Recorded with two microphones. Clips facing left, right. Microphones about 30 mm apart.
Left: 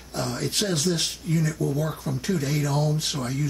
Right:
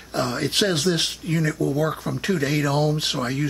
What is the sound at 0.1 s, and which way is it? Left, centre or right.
Speech, right.